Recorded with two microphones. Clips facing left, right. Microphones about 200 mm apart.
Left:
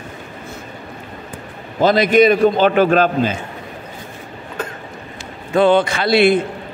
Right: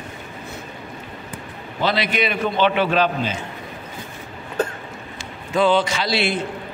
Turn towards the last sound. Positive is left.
turn(degrees=55)  # may be behind; listen again after turning